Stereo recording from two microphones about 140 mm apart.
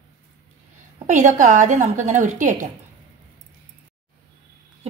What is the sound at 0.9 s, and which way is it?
A woman's voice, 60° right (ahead or behind).